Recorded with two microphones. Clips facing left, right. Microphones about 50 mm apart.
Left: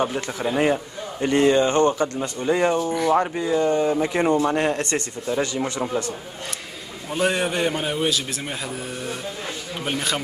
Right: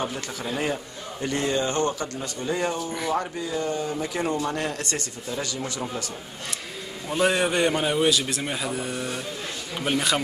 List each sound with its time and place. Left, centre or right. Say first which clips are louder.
0.0 s speech: left 6 dB; left
2.9 s a man's voice: left 7 dB; centre
3.2 s speech: left 7 dB; left
7.1 s a man's voice: even; centre